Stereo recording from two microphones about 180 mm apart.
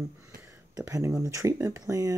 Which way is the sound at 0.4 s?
20° right (ahead or behind).